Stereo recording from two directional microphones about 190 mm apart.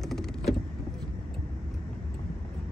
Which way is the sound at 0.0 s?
Centre (ahead or behind).